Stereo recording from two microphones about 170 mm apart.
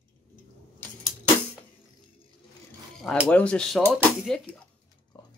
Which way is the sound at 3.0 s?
Centre (ahead or behind).